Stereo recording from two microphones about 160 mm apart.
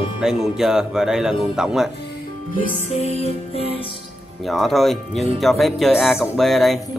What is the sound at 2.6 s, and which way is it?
Music, 45° left (ahead or behind).